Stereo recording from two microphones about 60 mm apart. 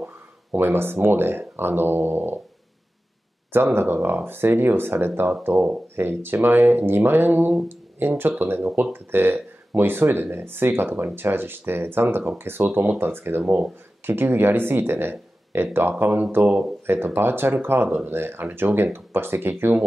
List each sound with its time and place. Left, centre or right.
0.0 s a sound: right
1.0 s speech: right
3.5 s speech: right